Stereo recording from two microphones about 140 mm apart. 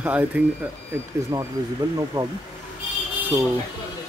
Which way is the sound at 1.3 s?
25° right (ahead or behind).